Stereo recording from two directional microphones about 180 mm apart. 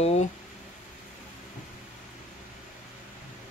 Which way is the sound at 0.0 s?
35° left (ahead or behind).